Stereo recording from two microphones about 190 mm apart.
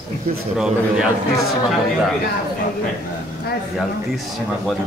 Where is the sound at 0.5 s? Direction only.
5° right (ahead or behind).